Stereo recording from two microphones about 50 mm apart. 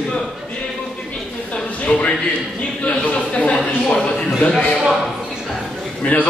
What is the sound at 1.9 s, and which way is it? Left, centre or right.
A man's voice, left.